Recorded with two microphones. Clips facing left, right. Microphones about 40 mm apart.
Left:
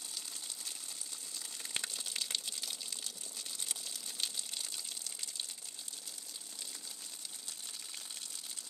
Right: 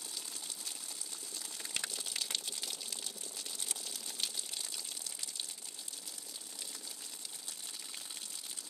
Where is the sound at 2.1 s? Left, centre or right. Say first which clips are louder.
Even; right.